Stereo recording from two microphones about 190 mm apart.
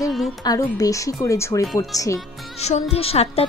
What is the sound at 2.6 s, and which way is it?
Speech, 35° left (ahead or behind).